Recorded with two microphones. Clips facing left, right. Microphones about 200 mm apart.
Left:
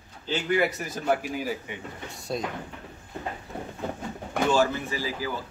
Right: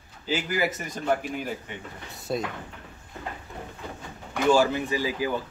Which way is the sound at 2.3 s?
Centre (ahead or behind).